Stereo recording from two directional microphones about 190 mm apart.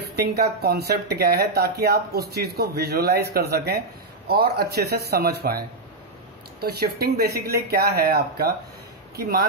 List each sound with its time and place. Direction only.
0.1 s speech: 55° right (ahead or behind)